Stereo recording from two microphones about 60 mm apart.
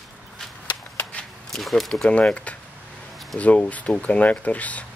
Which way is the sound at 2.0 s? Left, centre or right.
Centre.